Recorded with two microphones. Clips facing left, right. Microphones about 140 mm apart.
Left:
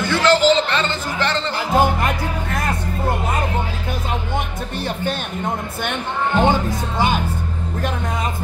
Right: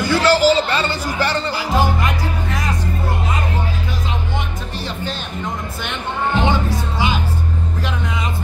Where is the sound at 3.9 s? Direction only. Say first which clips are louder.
Left 1 dB; 55° left (ahead or behind).